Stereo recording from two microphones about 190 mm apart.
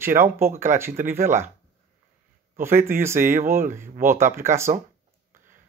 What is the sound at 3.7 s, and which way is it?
Speech, 10° right (ahead or behind).